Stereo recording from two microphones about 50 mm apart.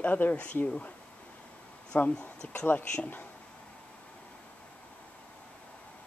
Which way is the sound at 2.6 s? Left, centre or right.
Left.